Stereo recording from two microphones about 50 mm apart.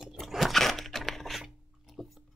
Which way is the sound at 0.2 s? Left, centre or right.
Centre.